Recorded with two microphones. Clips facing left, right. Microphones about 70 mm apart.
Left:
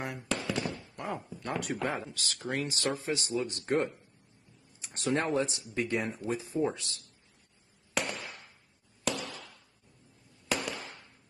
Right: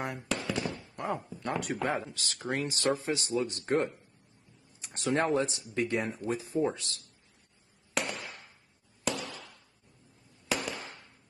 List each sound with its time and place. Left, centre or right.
0.0 s fireworks: centre
0.4 s fireworks: centre
1.1 s speech: centre
6.5 s a man's voice: left
7.9 s firecracker: centre
9.0 s a sound: centre